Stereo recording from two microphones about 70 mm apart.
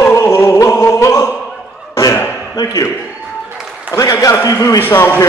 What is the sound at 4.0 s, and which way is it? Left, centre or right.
Speech, left.